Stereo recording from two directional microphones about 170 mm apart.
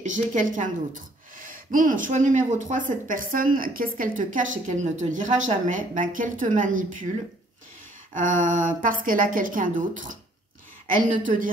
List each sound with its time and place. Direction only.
0.0 s a woman's voice: 50° right (ahead or behind)
8.1 s a woman's voice: 50° right (ahead or behind)